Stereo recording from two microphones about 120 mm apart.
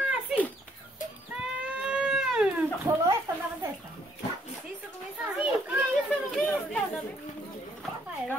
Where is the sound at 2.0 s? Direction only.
Centre (ahead or behind).